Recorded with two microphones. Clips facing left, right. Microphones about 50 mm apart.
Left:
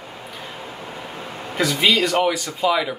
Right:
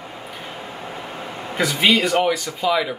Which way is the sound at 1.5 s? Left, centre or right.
Centre.